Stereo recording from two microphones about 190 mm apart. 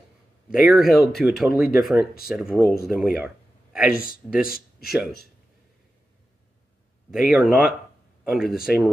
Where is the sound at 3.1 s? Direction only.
5° right (ahead or behind).